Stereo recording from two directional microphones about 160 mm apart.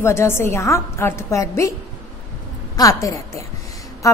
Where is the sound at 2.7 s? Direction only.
20° left (ahead or behind).